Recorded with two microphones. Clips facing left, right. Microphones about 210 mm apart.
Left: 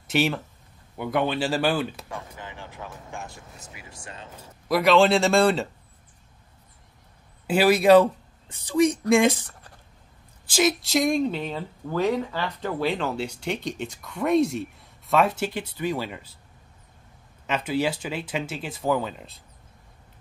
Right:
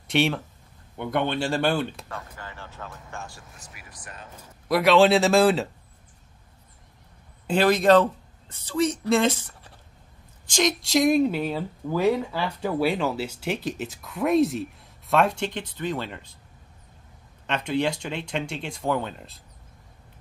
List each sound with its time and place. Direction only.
0.1 s speech: centre (ahead or behind); by 4.5 s 25° left (ahead or behind)
4.6 s speech: centre (ahead or behind)
7.4 s speech: 10° left (ahead or behind)
17.5 s speech: 5° left (ahead or behind)